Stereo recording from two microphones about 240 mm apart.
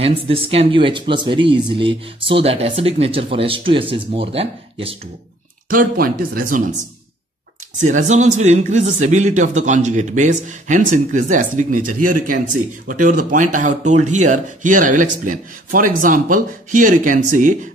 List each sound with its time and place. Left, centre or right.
0.0 s speech: right
5.7 s speech: right
7.7 s speech: right